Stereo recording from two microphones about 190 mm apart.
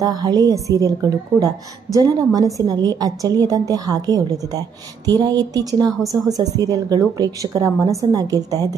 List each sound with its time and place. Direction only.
0.0 s a woman's voice: 20° right (ahead or behind)
5.2 s a woman's voice: 20° right (ahead or behind)